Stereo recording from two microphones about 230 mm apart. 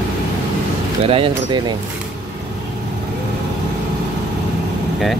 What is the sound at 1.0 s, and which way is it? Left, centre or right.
Speech, right.